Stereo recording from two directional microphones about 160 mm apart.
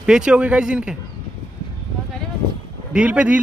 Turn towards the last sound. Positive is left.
turn(degrees=-10)  # may be behind; listen again after turning